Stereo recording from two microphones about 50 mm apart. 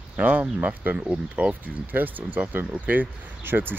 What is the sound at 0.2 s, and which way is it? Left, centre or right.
Speech, right.